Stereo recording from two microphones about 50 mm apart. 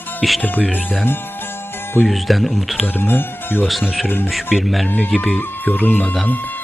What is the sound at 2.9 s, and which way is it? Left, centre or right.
Speech, left.